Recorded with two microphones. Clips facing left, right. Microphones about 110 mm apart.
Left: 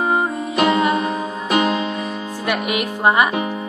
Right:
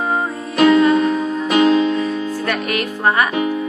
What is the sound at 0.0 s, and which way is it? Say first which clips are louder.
Music: left 1 dB; 15° left (ahead or behind).